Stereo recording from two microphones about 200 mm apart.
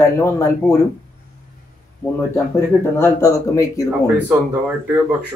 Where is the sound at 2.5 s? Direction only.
15° left (ahead or behind).